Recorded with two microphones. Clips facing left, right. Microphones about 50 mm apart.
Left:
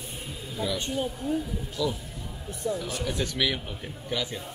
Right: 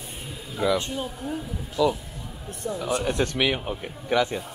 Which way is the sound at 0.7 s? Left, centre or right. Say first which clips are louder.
Right 5 dB; centre.